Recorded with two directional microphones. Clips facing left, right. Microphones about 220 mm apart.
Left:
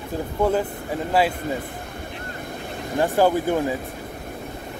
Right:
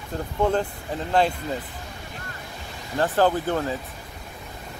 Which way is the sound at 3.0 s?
10° left (ahead or behind).